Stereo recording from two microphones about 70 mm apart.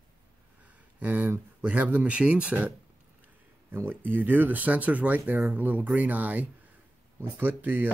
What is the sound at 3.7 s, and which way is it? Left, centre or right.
Speech, right.